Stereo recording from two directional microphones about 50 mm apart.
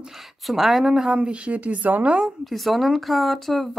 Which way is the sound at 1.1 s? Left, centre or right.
Right.